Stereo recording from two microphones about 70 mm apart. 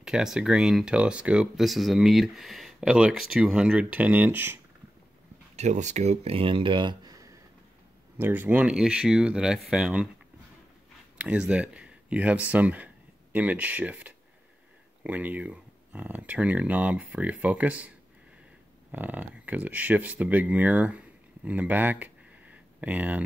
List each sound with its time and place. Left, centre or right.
0.0 s speech: centre
1.6 s speech: centre
3.9 s speech: right
6.8 s a sound: right
8.2 s speech: right
8.7 s speech: centre
11.1 s speech: centre